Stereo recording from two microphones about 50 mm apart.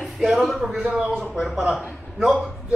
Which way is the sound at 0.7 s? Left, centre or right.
Right.